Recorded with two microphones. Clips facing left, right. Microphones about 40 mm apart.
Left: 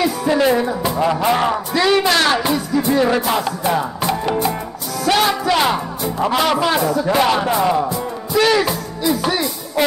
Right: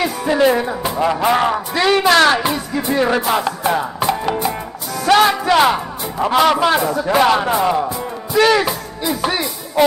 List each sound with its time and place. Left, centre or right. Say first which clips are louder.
0.3 s music: right 2 dB; centre
1.2 s speech: right 1 dB; centre
2.0 s speech: right 4 dB; right
2.3 s speech: even; centre
2.8 s music: right 1 dB; centre
5.0 s speech: right 4 dB; right
5.3 s speech: right 3 dB; right